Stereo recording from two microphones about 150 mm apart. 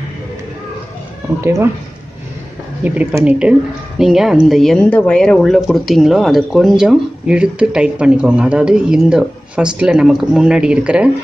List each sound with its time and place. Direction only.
1.4 s speech: 20° right (ahead or behind)
2.8 s speech: 10° right (ahead or behind)